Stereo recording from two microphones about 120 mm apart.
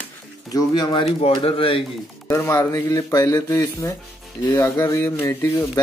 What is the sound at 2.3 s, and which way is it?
Speech, 20° left (ahead or behind).